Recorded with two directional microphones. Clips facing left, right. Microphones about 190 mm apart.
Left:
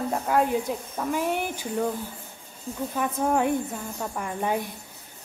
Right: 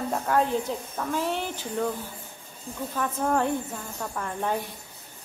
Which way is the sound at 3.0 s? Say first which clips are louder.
Left 1 dB; 15° left (ahead or behind).